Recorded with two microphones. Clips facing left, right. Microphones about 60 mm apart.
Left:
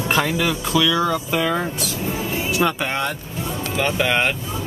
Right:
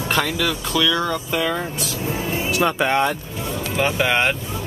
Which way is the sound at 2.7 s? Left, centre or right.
Centre.